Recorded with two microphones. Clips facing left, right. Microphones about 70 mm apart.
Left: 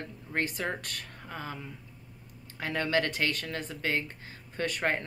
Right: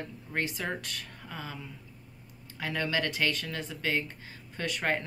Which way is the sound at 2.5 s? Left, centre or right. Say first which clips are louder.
Left 2 dB; left.